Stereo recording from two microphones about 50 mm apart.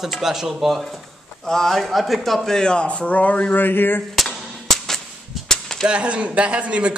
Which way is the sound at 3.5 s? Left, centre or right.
Left.